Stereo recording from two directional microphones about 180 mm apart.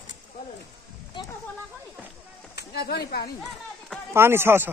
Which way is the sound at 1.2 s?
25° left (ahead or behind).